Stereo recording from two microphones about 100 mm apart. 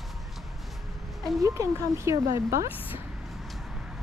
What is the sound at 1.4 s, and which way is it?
Speech, 30° right (ahead or behind).